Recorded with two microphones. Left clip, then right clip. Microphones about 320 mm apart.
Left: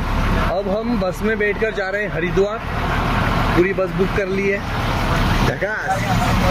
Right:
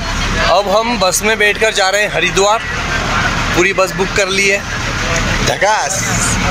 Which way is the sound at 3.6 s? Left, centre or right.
Right.